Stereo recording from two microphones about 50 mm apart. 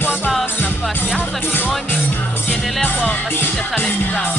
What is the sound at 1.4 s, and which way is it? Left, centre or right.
Speech, left.